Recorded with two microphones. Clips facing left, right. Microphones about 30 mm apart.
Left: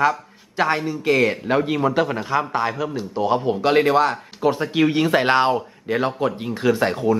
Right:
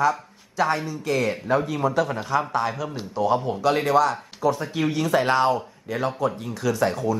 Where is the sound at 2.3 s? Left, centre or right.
Left.